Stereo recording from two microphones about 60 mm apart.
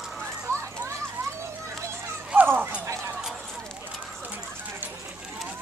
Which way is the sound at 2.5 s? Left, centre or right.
Right.